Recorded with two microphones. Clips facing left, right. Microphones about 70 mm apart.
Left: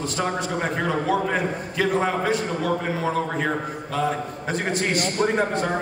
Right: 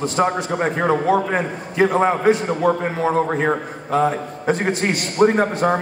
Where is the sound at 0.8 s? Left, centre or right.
Right.